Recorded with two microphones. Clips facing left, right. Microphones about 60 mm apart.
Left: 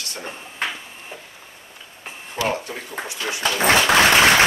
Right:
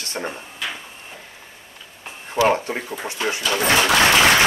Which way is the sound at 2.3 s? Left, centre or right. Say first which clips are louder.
Right 6 dB; right.